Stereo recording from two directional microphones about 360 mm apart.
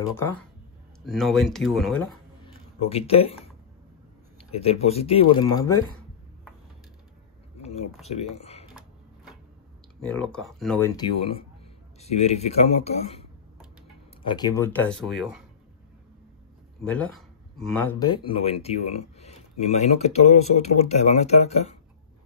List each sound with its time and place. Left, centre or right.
0.0 s speech: centre
2.4 s a sound: centre
4.5 s speech: centre
8.1 s a sound: centre
9.9 s speech: centre
16.8 s speech: centre